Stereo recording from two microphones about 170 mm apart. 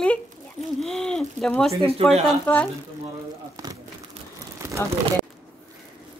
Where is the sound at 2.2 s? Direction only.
10° left (ahead or behind).